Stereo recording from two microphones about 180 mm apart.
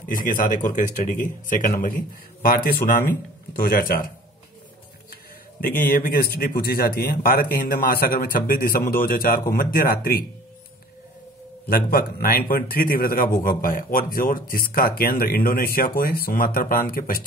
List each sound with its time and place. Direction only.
0.0 s a man's voice: 50° left (ahead or behind)
5.6 s speech: 55° left (ahead or behind)
11.6 s a man's voice: 55° left (ahead or behind)